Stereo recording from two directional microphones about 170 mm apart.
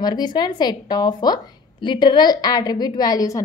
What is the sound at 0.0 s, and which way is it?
A woman's voice, 25° left (ahead or behind).